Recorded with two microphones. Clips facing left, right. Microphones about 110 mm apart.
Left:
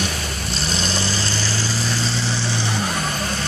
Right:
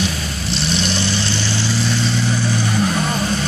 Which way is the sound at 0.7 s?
40° left (ahead or behind).